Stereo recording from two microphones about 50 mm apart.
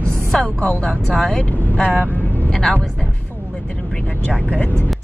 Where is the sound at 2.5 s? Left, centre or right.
Centre.